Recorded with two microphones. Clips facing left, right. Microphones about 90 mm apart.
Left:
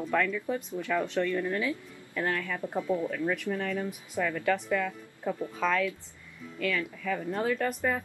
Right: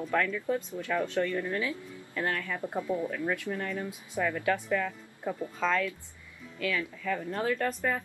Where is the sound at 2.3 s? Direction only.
15° right (ahead or behind).